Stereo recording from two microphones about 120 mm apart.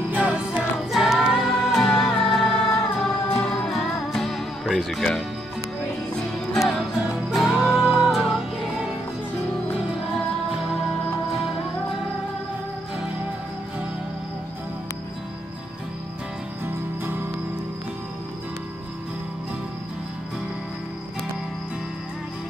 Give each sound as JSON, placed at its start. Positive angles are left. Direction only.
{"t": 0.1, "sound": "music", "side_deg": -10}
{"t": 7.2, "sound": "music", "side_deg": -5}
{"t": 16.6, "sound": "music", "side_deg": -15}